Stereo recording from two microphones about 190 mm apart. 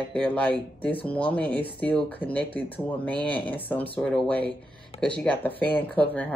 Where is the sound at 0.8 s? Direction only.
10° left (ahead or behind).